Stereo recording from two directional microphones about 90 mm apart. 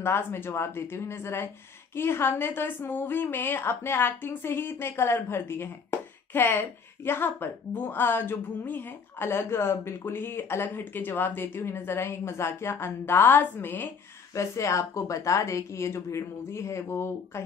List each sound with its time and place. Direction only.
0.0 s a woman's voice: 25° left (ahead or behind)
14.3 s a woman's voice: 35° left (ahead or behind)